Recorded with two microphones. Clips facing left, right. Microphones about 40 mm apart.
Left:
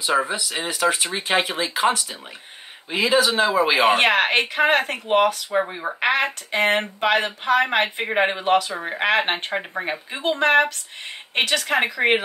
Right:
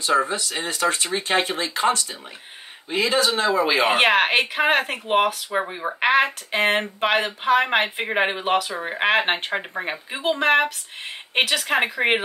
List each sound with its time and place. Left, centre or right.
0.3 s speech: left
3.9 s speech: centre
11.6 s speech: centre